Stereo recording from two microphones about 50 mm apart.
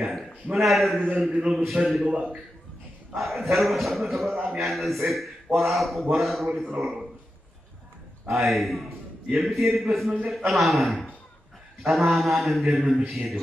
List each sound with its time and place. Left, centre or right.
0.0 s a man's voice: centre
1.3 s a man's voice: centre
1.6 s a man's voice: centre
2.0 s a man's voice: right
3.2 s a man's voice: centre
8.3 s a man's voice: centre